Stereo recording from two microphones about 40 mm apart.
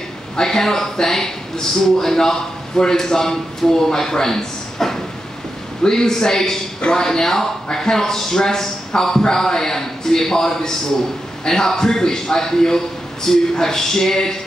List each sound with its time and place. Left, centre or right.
0.4 s a man's voice: centre